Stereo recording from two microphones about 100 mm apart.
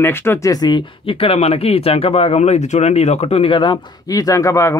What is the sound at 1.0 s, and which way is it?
Speech, 70° left (ahead or behind).